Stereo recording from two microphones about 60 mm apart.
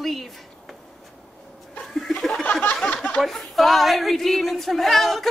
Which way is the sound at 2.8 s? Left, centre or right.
Left.